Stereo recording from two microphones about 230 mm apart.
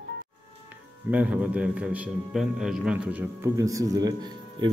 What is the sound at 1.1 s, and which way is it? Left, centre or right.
A man's voice, centre.